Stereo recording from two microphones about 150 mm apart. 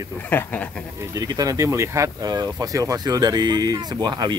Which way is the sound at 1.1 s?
25° right (ahead or behind).